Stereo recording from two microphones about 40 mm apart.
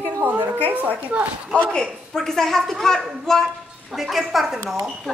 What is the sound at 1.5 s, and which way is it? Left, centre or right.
Speech, left.